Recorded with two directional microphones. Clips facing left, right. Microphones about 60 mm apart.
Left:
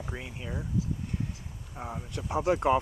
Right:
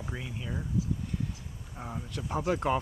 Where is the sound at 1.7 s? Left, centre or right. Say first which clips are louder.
Left 1 dB; centre.